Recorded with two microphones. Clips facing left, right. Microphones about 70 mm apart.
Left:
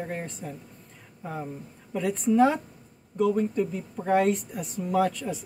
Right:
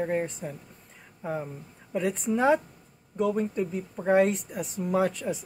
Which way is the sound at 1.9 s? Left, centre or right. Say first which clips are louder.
Left 4 dB; centre.